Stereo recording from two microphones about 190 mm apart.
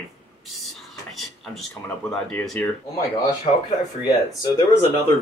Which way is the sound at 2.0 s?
5° left (ahead or behind).